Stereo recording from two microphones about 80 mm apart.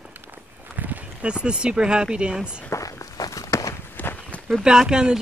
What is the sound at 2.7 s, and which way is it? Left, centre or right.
Walk, left.